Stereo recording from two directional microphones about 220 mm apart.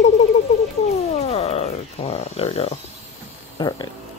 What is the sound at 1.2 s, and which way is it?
Speech, 30° left (ahead or behind).